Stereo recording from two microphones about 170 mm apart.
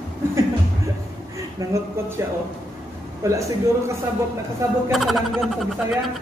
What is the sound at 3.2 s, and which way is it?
Speech, 20° right (ahead or behind).